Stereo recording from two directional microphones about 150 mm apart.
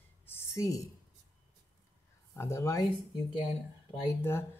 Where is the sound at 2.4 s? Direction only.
20° left (ahead or behind).